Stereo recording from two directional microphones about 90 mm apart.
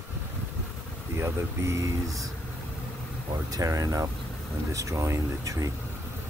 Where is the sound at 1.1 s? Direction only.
30° right (ahead or behind).